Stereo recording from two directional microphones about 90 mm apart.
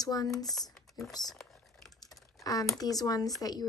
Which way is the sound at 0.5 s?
5° left (ahead or behind).